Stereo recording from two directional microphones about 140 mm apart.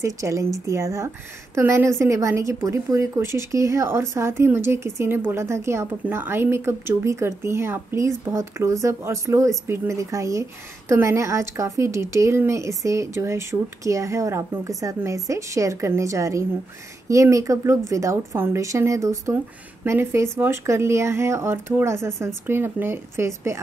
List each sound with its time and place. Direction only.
0.0 s a woman's voice: 20° right (ahead or behind)